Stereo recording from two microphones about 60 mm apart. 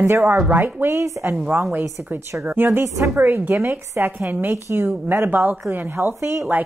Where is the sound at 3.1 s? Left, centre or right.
Right.